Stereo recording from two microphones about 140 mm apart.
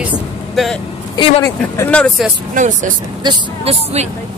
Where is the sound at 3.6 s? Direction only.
50° right (ahead or behind).